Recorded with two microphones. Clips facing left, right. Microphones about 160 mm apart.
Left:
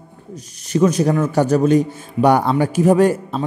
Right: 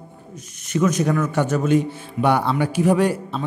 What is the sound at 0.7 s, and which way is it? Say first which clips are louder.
A man's voice: left 4 dB; 30° left (ahead or behind).